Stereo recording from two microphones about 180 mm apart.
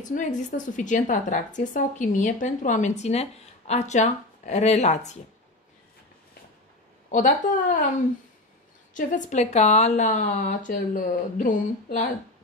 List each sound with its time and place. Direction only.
0.0 s a woman's voice: 45° left (ahead or behind)
7.1 s a woman's voice: 45° left (ahead or behind)
8.9 s a woman's voice: 45° left (ahead or behind)